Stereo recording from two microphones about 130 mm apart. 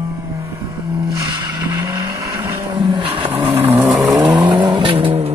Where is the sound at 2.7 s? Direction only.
35° right (ahead or behind).